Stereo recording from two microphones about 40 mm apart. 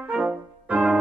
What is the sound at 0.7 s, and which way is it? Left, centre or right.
Keyboard, right.